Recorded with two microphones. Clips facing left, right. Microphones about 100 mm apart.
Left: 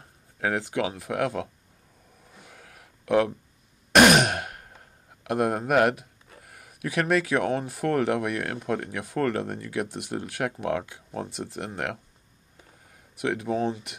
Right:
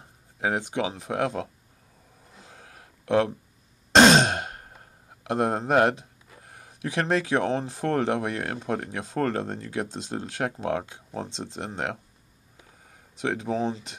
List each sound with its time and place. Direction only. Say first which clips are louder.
0.4 s speech: even; 20° right (ahead or behind)
2.3 s a sound: right 1 dB; 30° right (ahead or behind)
3.9 s throat clearing: right 1 dB; 25° right (ahead or behind)
5.2 s speech: even; 25° right (ahead or behind)
13.2 s speech: left 1 dB; 25° right (ahead or behind)